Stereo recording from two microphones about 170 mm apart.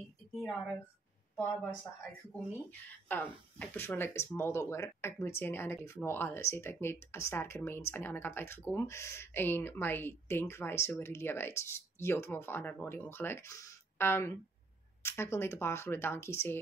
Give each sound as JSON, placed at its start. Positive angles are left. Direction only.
{"t": 0.4, "sound": "a woman's voice", "side_deg": 0}
{"t": 2.3, "sound": "speech", "side_deg": 10}